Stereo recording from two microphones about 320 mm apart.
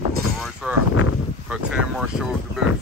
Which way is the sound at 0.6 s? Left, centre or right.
Centre.